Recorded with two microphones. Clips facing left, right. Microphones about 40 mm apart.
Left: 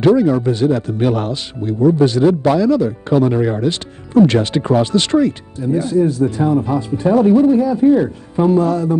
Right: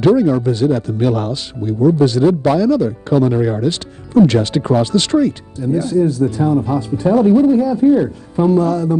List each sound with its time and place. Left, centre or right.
0.0 s speech: left